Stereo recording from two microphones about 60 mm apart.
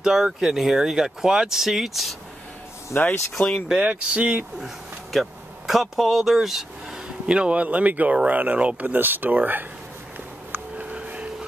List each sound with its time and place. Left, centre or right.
0.0 s speech: centre
2.9 s speech: left
3.6 s speech: centre
5.1 s speech: centre
7.2 s speech: centre
10.5 s a sound: right